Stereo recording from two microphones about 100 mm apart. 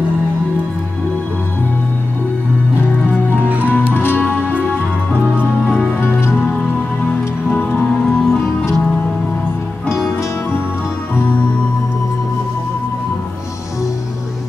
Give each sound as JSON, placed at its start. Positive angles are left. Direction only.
{"t": 3.3, "sound": "music", "side_deg": -15}
{"t": 3.6, "sound": "music", "side_deg": 20}
{"t": 8.0, "sound": "music", "side_deg": 5}
{"t": 9.8, "sound": "music", "side_deg": 25}